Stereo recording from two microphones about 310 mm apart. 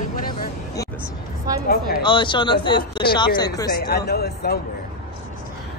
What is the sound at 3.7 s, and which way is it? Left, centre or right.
Speech, left.